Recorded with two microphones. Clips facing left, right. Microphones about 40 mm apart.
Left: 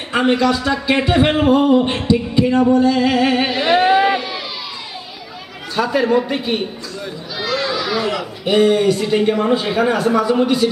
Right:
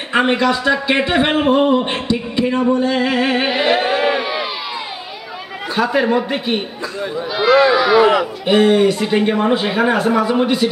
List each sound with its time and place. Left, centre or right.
0.1 s speech: centre
3.6 s a sound: centre
5.8 s speech: centre